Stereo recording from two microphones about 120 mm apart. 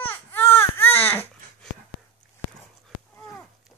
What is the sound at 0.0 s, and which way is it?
Baby cry, 15° left (ahead or behind).